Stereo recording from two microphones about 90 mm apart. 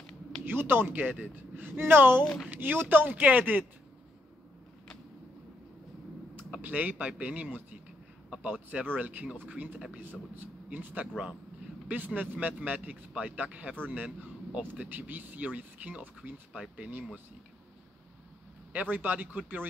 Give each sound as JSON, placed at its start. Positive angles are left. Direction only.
{"t": 0.5, "sound": "speech", "side_deg": -25}
{"t": 2.2, "sound": "speech", "side_deg": 10}
{"t": 2.5, "sound": "speech", "side_deg": -20}
{"t": 6.6, "sound": "a man's voice", "side_deg": -20}
{"t": 18.7, "sound": "speech", "side_deg": -15}